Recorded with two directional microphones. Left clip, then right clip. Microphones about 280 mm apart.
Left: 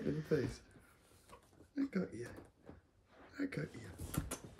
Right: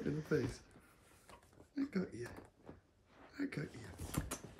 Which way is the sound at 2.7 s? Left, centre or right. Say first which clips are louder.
Right 1 dB; centre.